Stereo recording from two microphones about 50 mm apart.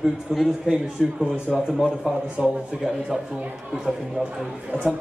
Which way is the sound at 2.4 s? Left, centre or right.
Right.